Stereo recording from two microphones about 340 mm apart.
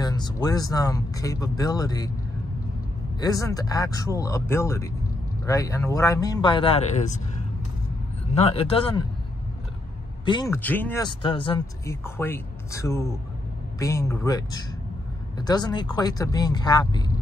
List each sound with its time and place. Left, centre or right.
0.0 s speech: centre
3.2 s speech: centre
8.4 s speech: centre
10.2 s speech: centre